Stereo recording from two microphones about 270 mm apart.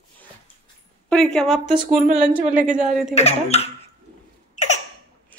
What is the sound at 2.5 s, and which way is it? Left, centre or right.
Speech, right.